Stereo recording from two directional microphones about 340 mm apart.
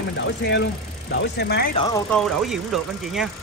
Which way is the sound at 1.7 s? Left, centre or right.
Centre.